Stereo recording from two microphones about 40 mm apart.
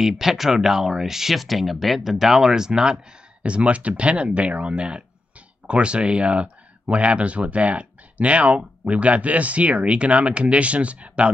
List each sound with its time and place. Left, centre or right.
0.0 s speech: centre
3.4 s speech: right